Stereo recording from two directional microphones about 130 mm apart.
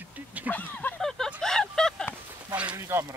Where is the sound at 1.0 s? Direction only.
5° left (ahead or behind).